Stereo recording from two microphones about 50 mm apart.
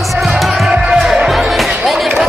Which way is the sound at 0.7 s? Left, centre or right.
Centre.